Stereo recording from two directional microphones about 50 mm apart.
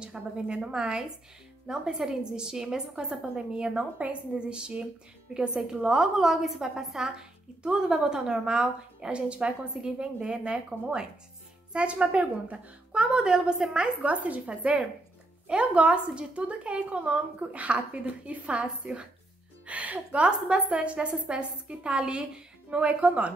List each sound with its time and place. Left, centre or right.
0.0 s a woman's voice: centre
14.0 s a woman's voice: right